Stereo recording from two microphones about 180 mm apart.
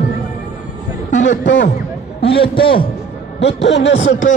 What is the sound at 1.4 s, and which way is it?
Speech, 80° left.